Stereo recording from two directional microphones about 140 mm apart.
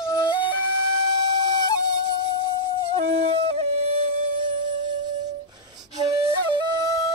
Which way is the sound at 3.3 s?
45° right (ahead or behind).